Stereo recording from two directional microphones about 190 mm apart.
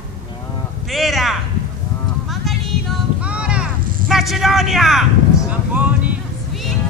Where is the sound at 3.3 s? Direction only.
5° right (ahead or behind).